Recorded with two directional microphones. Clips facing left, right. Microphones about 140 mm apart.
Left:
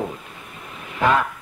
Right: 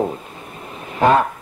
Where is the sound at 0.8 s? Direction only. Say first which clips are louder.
Right 5 dB; 35° right (ahead or behind).